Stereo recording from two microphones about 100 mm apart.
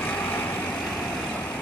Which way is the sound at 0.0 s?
15° left (ahead or behind).